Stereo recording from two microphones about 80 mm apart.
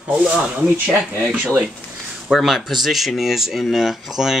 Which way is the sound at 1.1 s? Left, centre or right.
Right.